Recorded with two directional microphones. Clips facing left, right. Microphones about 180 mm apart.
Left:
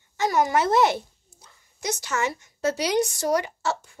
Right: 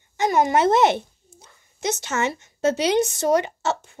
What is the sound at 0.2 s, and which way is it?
A child's voice, 20° right (ahead or behind).